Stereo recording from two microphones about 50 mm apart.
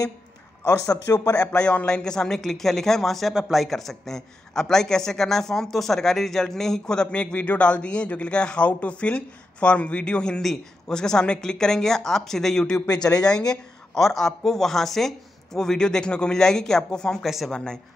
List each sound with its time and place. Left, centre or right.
1.1 s speech: left
1.4 s a man's voice: left
14.0 s speech: centre
17.2 s speech: centre
17.5 s speech: centre